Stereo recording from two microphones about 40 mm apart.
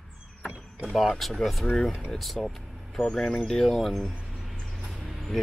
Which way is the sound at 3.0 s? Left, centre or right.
Centre.